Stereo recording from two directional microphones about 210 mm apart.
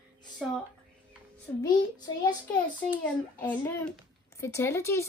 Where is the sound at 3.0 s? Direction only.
5° left (ahead or behind).